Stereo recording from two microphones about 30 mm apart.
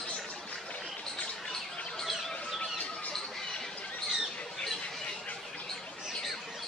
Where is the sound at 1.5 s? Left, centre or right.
Centre.